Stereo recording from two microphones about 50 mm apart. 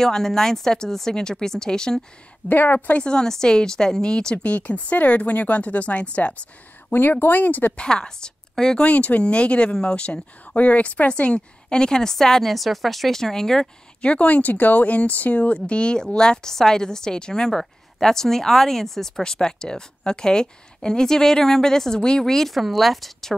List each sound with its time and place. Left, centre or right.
0.0 s speech: centre
2.4 s speech: left
3.0 s speech: centre
4.4 s speech: left
6.9 s speech: left
7.7 s speech: centre
8.8 s speech: left; by 13.7 s centre
14.0 s speech: left; by 23.3 s centre